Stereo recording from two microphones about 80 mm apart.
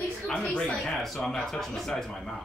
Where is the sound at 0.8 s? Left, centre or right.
Centre.